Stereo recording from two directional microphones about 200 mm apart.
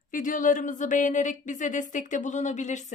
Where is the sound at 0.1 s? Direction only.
40° left (ahead or behind).